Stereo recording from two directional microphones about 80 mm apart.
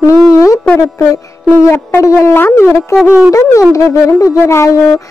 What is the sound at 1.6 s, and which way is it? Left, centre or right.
A woman's voice, left.